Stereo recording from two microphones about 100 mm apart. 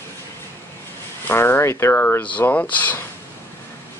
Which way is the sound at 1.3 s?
25° left (ahead or behind).